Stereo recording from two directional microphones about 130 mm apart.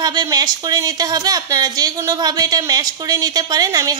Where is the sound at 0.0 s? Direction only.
30° right (ahead or behind).